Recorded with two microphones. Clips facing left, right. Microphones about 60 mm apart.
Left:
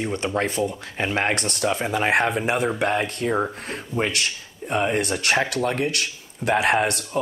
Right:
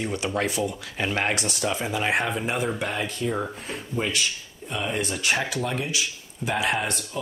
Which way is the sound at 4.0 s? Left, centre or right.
Left.